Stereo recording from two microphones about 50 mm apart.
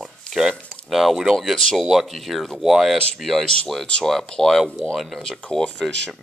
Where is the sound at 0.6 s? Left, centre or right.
Centre.